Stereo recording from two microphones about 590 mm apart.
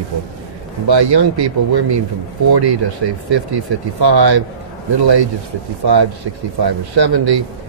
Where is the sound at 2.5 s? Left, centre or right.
Right.